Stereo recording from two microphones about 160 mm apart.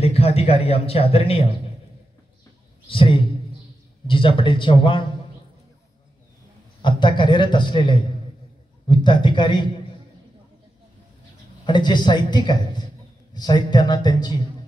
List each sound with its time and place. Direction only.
0.0 s speech: 40° left (ahead or behind)
2.9 s speech: 35° left (ahead or behind)
6.8 s a man's voice: 30° left (ahead or behind)
11.6 s a man's voice: 30° left (ahead or behind)